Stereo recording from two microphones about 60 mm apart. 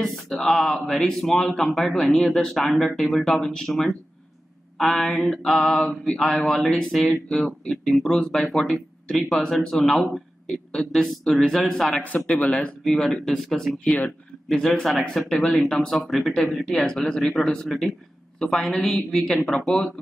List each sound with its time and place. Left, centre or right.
0.0 s speech: centre
2.0 s mantra: centre
2.3 s speech: centre
4.7 s mantra: centre
12.0 s speech: left
12.8 s speech: centre